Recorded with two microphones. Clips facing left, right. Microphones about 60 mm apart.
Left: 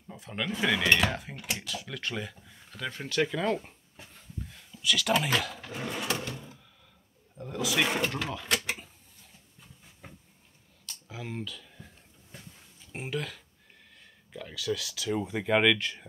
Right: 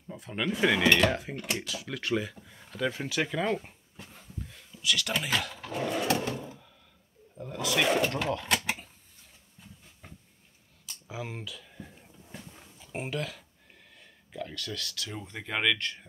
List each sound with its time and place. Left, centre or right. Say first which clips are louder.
0.1 s speech: right 2 dB; centre
5.9 s drawer open or close: right 5 dB; right
7.3 s speech: even; centre
8.6 s a sound: right 2 dB; centre
10.0 s vehicle: left 1 dB; centre
10.9 s a sound: right 1 dB; centre
12.7 s speech: right 1 dB; centre